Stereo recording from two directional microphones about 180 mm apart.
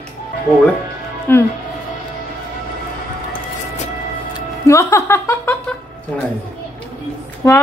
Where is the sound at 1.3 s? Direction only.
10° left (ahead or behind).